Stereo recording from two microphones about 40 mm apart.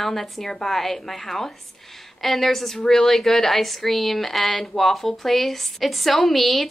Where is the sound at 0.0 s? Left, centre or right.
Centre.